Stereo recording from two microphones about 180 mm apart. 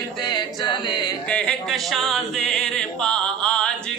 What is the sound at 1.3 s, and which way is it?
Singing, centre (ahead or behind).